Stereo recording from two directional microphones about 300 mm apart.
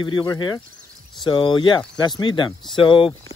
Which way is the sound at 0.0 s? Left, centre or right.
Centre.